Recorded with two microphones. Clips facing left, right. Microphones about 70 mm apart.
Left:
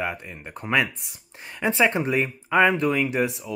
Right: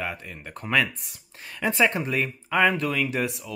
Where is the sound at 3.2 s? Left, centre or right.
Centre.